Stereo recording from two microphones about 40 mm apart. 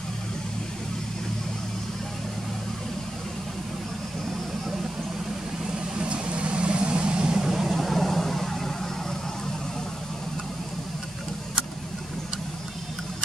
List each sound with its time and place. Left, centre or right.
5.9 s vehicle: right
7.5 s vehicle: centre